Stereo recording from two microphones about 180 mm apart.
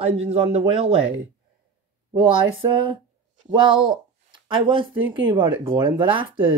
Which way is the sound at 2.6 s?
25° right (ahead or behind).